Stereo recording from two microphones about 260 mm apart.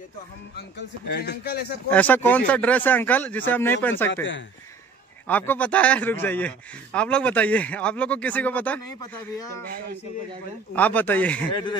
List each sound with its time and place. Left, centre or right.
0.6 s a man's voice: left
1.9 s speech: centre
4.1 s speech: left
5.2 s a man's voice: centre
10.7 s a man's voice: centre